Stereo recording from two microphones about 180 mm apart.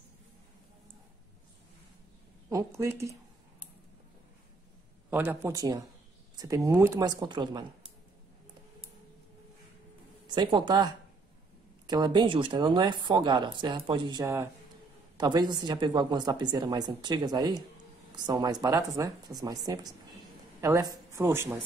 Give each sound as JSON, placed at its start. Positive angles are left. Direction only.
{"t": 2.5, "sound": "speech", "side_deg": -15}
{"t": 5.1, "sound": "a woman's voice", "side_deg": -10}
{"t": 10.2, "sound": "a woman's voice", "side_deg": -25}
{"t": 14.2, "sound": "a woman's voice", "side_deg": -15}